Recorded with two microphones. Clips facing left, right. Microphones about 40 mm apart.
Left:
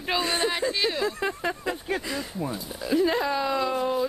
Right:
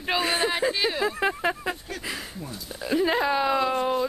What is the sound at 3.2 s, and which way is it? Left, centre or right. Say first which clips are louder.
Speech: right 2 dB; right.